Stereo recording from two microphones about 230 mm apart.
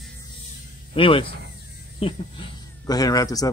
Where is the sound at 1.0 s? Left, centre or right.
Left.